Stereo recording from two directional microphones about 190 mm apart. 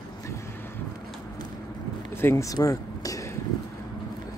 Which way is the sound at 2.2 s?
15° left (ahead or behind).